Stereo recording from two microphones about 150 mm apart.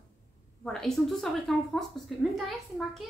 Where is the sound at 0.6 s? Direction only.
5° left (ahead or behind).